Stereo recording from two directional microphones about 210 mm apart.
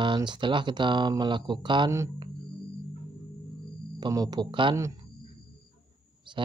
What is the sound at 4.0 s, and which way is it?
Speech, 20° right (ahead or behind).